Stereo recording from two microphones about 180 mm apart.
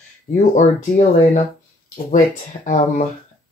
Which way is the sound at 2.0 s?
55° left (ahead or behind).